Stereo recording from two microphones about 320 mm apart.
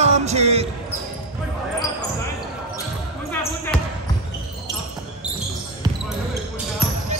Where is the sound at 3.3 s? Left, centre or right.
Centre.